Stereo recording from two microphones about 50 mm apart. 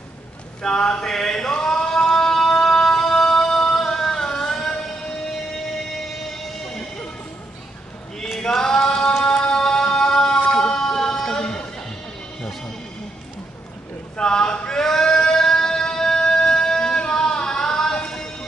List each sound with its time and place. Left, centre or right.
0.6 s chant: centre
5.3 s music: centre
8.4 s a sound: centre
9.2 s music: centre
10.5 s a sound: centre
14.1 s male singing: centre